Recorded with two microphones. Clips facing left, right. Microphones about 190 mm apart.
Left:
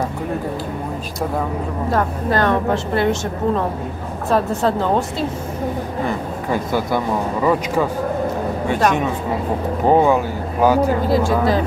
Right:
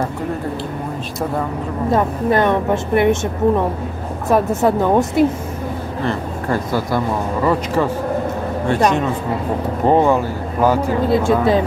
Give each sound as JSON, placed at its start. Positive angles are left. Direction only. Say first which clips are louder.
{"t": 1.9, "sound": "a woman's voice", "louder": "right 4 dB", "side_deg": -20}
{"t": 6.0, "sound": "speech", "louder": "right 4 dB", "side_deg": 5}
{"t": 9.8, "sound": "speech", "louder": "even", "side_deg": 5}
{"t": 11.1, "sound": "a woman's voice", "louder": "right 2 dB", "side_deg": -25}